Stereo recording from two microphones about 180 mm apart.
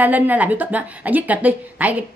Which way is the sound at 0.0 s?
10° right (ahead or behind).